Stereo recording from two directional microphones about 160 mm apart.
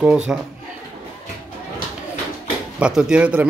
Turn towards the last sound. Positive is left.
turn(degrees=-5)  # may be behind; listen again after turning